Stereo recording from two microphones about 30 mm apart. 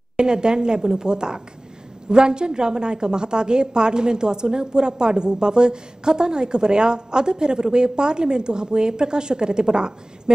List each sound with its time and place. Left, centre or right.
0.2 s a woman's voice: right